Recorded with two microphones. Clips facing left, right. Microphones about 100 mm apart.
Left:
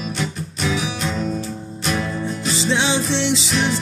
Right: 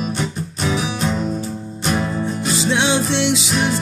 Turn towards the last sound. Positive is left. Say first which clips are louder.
# right 1 dB
turn(degrees=-5)  # may be behind; listen again after turning